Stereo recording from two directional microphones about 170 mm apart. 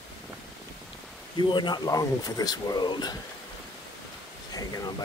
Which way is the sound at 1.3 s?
25° left (ahead or behind).